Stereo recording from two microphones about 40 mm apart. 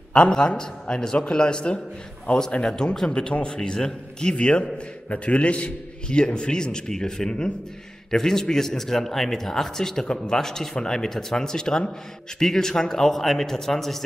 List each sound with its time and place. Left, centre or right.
0.3 s a man's voice: centre
2.3 s speech: left
2.6 s a man's voice: centre
8.1 s a man's voice: centre